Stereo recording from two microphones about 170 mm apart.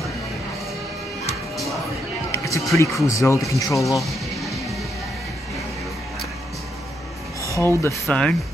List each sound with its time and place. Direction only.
2.3 s music: 20° left (ahead or behind)
2.7 s speech: 20° left (ahead or behind)
4.0 s music: centre (ahead or behind)
7.5 s speech: 15° left (ahead or behind)